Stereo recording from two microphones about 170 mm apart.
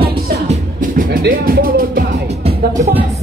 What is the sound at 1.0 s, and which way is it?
Music, 55° right (ahead or behind).